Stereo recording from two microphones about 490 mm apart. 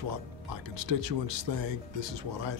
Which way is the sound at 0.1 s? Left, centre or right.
Right.